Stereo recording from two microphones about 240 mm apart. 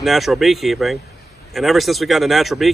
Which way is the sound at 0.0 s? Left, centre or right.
Centre.